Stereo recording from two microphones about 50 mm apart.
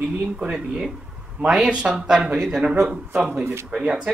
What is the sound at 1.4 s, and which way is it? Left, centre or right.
Speech, centre.